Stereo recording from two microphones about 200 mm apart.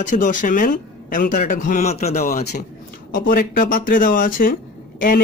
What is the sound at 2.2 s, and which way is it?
Speech, 50° left (ahead or behind).